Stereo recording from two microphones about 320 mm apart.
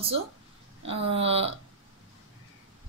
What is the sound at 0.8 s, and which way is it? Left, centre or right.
Speech, centre.